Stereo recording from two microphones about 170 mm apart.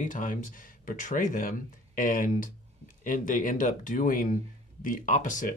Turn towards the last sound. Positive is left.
turn(degrees=50)  # may be behind; listen again after turning